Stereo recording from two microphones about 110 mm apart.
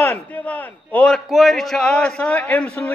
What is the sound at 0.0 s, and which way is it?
A man's voice, 15° left (ahead or behind).